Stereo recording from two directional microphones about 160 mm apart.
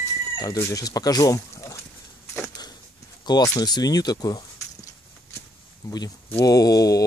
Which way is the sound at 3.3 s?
25° left (ahead or behind).